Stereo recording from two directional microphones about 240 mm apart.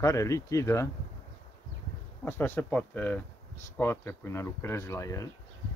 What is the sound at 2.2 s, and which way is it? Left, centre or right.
Speech, centre.